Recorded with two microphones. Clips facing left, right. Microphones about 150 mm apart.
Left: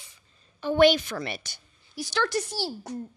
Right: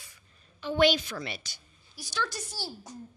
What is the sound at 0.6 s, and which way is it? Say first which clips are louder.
A woman's voice: left 5 dB; 55° left (ahead or behind).